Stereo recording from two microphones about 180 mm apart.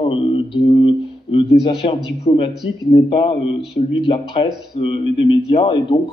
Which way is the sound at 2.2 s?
30° left (ahead or behind).